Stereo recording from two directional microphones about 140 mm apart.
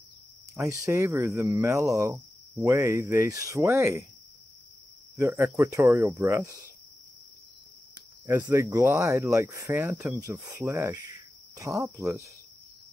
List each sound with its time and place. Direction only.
0.6 s speech: 20° right (ahead or behind)
5.1 s speech: 20° right (ahead or behind)
8.3 s speech: 15° right (ahead or behind)